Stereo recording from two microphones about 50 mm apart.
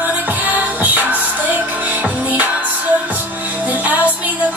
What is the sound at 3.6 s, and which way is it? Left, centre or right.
Music, right.